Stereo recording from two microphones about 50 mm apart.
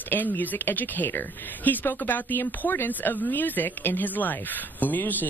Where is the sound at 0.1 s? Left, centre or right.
Left.